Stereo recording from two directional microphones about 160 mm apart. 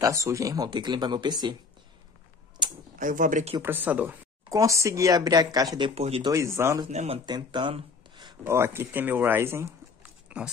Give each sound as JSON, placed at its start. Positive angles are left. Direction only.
{"t": 0.0, "sound": "speech", "side_deg": -20}
{"t": 3.0, "sound": "speech", "side_deg": -55}
{"t": 3.6, "sound": "speech", "side_deg": -10}
{"t": 6.2, "sound": "speech", "side_deg": -15}
{"t": 6.9, "sound": "speech", "side_deg": -45}
{"t": 7.2, "sound": "a sound", "side_deg": -25}
{"t": 8.5, "sound": "speech", "side_deg": -15}